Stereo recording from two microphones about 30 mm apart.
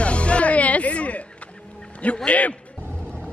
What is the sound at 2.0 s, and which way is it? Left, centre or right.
Music, left.